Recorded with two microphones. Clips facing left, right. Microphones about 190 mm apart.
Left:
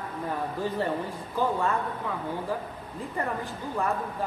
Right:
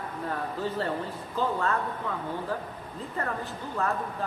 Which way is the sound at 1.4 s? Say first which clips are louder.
Left 2 dB; 10° left (ahead or behind).